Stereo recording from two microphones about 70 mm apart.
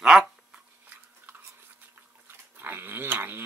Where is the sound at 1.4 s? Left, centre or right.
Right.